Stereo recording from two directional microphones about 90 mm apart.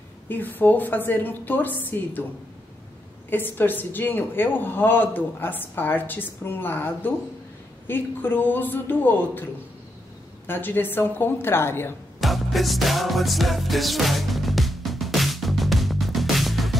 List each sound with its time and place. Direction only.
0.3 s speech: 20° left (ahead or behind)
3.3 s speech: 20° left (ahead or behind)
12.2 s music: centre (ahead or behind)